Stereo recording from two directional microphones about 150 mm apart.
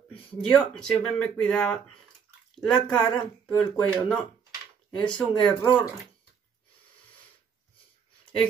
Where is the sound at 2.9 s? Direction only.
30° left (ahead or behind).